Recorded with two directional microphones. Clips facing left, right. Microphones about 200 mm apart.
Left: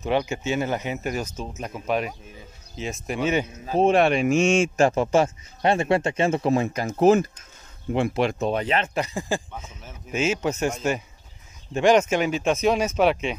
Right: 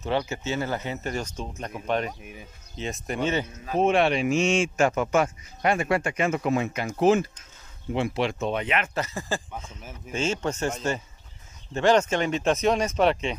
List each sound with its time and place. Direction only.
0.0 s speech: 15° left (ahead or behind)
3.6 s a man's voice: 35° left (ahead or behind)
4.0 s a man's voice: 50° left (ahead or behind)
8.8 s speech: 15° left (ahead or behind)